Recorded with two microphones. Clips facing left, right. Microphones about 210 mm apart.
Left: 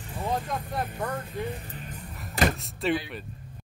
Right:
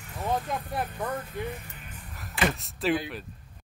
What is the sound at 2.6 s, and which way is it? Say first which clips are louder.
Speech: even; centre (ahead or behind).